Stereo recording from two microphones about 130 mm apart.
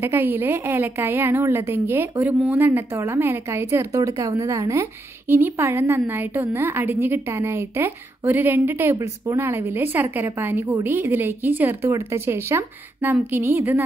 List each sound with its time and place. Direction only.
0.0 s a woman's voice: 20° right (ahead or behind)